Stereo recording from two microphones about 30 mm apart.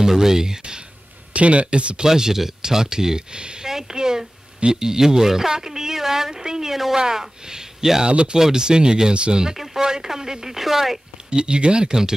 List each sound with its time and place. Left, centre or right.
0.2 s speech: centre
1.3 s speech: right
2.0 s speech: centre
3.3 s speech: right
3.6 s a woman's voice: centre
7.0 s speech: right
8.1 s speech: right
8.4 s speech: centre
9.1 s speech: right
9.8 s speech: right
11.2 s speech: right